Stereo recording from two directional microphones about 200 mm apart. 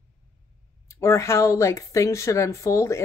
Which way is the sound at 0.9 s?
15° left (ahead or behind).